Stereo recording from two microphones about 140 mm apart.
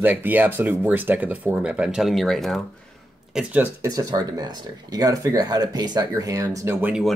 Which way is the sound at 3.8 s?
25° right (ahead or behind).